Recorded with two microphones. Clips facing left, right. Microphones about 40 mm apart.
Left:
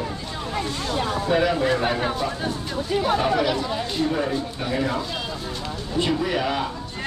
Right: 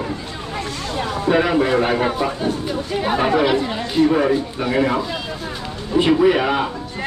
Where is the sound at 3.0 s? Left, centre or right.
Right.